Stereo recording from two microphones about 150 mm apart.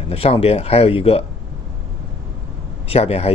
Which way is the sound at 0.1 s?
40° left (ahead or behind).